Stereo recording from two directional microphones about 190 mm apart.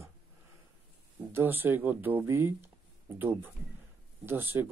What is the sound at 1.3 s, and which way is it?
Speech, 10° right (ahead or behind).